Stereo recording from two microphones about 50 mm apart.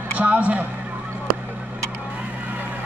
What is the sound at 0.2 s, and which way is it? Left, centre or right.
Speech, right.